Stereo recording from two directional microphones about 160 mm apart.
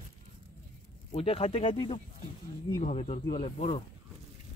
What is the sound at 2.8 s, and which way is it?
Speech, 45° left (ahead or behind).